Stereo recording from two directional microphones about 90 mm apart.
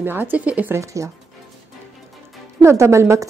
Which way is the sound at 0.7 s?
35° right (ahead or behind).